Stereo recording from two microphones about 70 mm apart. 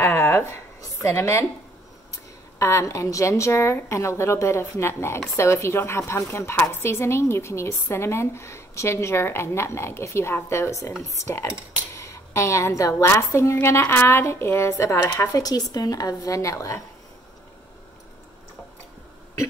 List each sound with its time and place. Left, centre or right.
0.0 s speech: left
0.7 s a sound: left
2.6 s a woman's voice: left